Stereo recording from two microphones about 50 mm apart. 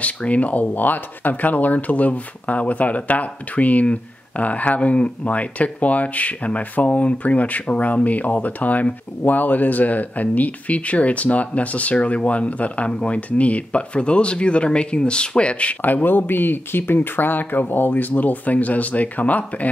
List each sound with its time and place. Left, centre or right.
0.0 s speech: left
15.8 s speech: left